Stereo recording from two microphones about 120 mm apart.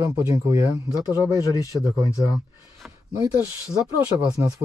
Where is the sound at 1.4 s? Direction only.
30° left (ahead or behind).